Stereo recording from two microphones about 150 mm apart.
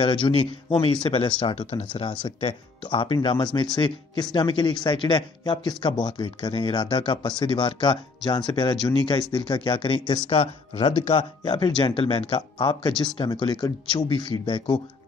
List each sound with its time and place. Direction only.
0.0 s speech: 30° left (ahead or behind)
2.9 s speech: 35° left (ahead or behind)